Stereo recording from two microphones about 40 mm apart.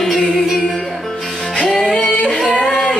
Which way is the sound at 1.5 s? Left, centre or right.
Centre.